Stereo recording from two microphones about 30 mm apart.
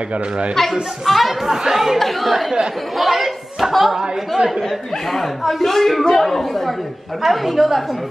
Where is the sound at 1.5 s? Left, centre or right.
Centre.